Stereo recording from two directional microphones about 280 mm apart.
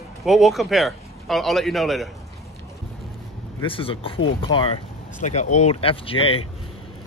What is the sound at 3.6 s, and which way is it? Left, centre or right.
Speech, centre.